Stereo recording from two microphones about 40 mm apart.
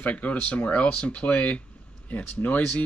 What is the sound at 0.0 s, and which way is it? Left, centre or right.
Speech, left.